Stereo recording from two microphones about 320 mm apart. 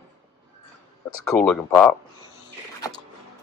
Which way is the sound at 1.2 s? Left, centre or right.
Centre.